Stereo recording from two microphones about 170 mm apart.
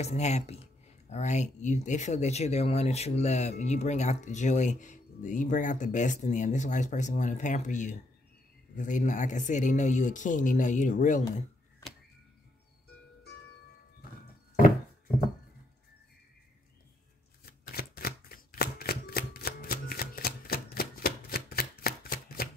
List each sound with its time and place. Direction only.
0.0 s speech: 40° left (ahead or behind)
17.5 s shuffling cards: 65° left (ahead or behind)